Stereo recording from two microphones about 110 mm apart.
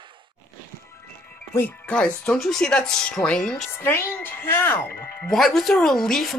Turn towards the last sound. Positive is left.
turn(degrees=5)  # may be behind; listen again after turning